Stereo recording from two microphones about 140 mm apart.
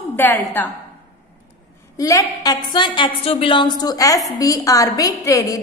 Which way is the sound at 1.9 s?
25° left (ahead or behind).